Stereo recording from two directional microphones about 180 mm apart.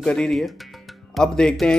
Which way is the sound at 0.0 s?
5° left (ahead or behind).